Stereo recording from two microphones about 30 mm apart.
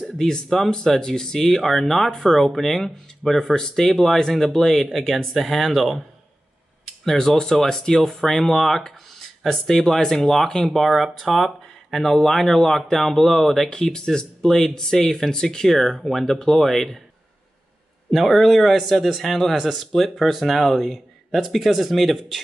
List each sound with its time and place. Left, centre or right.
0.0 s a sound: centre
0.7 s speech: left
1.6 s speech: centre
4.9 s a man's voice: centre
7.1 s speech: centre
11.2 s speech: centre
11.9 s a man's voice: centre
18.1 s a man's voice: centre